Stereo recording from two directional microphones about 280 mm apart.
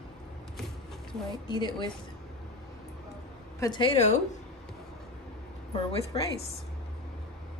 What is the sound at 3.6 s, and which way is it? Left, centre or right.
Speech, centre.